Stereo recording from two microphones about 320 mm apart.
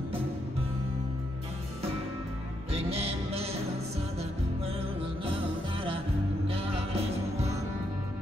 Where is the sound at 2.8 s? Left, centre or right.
Centre.